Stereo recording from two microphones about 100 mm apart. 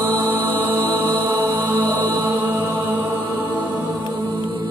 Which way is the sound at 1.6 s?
20° right (ahead or behind).